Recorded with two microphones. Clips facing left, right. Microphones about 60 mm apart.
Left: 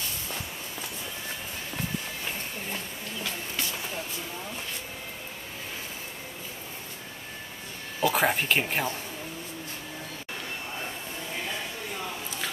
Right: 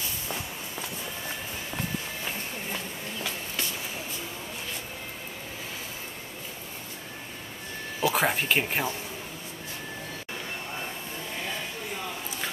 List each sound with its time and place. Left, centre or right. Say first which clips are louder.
8.0 s speech: left 1 dB; centre